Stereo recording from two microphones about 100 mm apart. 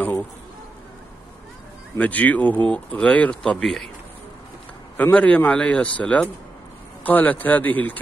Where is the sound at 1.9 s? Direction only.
15° left (ahead or behind).